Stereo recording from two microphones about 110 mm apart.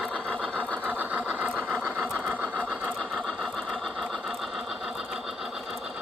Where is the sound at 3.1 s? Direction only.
Centre (ahead or behind).